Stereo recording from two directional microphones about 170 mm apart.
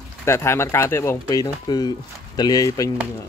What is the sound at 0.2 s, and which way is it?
Speech, 15° left (ahead or behind).